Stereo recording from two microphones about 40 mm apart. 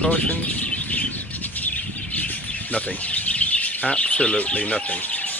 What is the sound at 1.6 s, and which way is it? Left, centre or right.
Squawk, left.